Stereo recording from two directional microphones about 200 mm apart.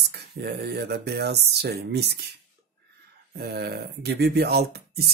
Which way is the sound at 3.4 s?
55° right (ahead or behind).